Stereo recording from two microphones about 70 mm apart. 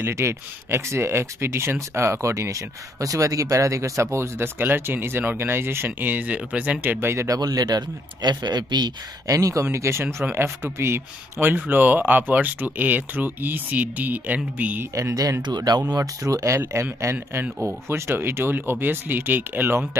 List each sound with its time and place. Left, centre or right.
0.1 s speech: right
7.2 s speech: right
9.3 s speech: right
15.0 s speech: right
15.4 s speech: right
16.0 s speech: right
16.5 s speech: right